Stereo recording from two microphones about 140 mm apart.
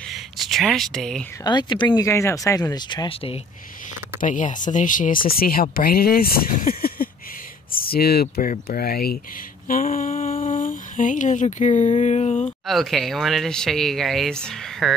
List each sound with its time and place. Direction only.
0.0 s a sound: centre (ahead or behind)
1.4 s speech: 30° left (ahead or behind)
2.0 s speech: 20° left (ahead or behind); by 3.3 s 40° left (ahead or behind)
4.2 s speech: 65° left (ahead or behind); by 9.2 s 90° left
9.7 s a sound: 70° left (ahead or behind)
10.4 s speech: 75° left (ahead or behind); by 12.4 s 50° left (ahead or behind)
12.6 s speech: centre (ahead or behind)